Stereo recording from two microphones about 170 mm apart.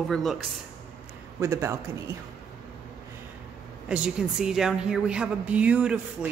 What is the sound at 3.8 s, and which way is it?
Speech, 5° right (ahead or behind).